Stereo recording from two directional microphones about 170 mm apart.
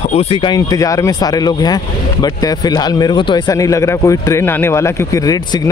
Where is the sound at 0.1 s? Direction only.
35° left (ahead or behind).